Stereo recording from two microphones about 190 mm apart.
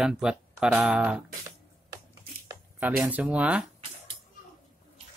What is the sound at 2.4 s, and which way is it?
Speech, 10° right (ahead or behind).